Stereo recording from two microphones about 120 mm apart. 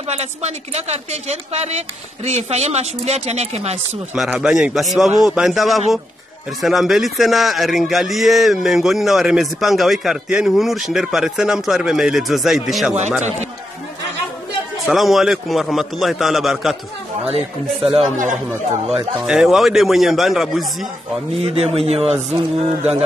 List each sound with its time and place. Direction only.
0.1 s speech: 65° right (ahead or behind)
4.3 s a man's voice: 5° right (ahead or behind)
14.9 s a man's voice: centre (ahead or behind)
17.2 s speech: 55° right (ahead or behind)
19.2 s a man's voice: 5° right (ahead or behind)
21.4 s speech: 55° right (ahead or behind)